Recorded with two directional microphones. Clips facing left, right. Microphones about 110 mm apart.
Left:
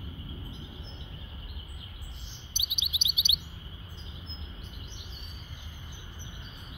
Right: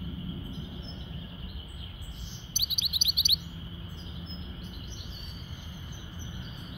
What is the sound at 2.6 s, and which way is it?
Chirp, 50° right (ahead or behind).